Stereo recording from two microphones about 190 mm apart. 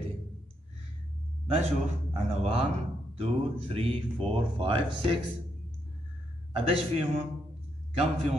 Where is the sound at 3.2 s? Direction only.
30° right (ahead or behind).